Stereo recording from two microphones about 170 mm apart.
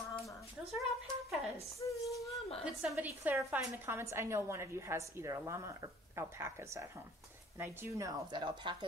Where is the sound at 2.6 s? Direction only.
5° right (ahead or behind).